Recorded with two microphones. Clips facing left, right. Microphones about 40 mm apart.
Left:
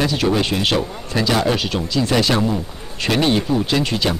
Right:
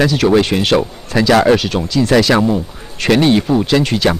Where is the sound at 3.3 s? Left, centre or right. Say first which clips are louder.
Right 5 dB; right.